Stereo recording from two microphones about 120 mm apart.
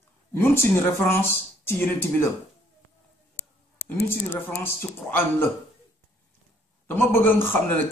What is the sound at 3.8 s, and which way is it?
A man's voice, 20° left (ahead or behind).